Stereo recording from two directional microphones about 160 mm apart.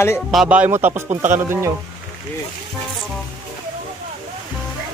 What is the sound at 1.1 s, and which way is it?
Speech, 50° right (ahead or behind).